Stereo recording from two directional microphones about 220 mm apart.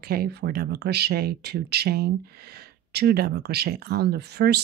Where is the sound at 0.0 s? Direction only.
45° right (ahead or behind).